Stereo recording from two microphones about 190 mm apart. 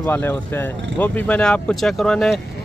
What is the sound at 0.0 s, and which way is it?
Speech, 10° left (ahead or behind).